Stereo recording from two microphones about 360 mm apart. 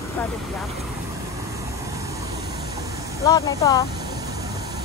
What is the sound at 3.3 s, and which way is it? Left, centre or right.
Speech, centre.